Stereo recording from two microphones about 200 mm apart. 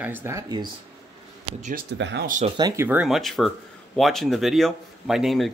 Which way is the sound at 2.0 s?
60° right (ahead or behind).